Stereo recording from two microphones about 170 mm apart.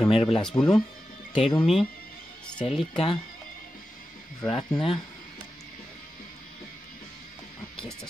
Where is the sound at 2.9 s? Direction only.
30° left (ahead or behind).